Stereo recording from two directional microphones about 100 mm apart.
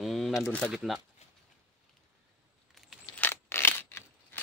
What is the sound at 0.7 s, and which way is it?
Speech, centre (ahead or behind).